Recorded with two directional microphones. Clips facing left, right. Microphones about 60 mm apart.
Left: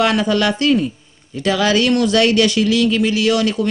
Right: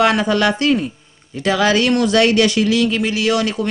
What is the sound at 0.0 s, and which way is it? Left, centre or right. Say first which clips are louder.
Speech: right 1 dB; right.